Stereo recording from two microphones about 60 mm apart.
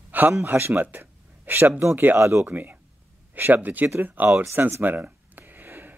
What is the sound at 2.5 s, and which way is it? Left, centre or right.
Speech, right.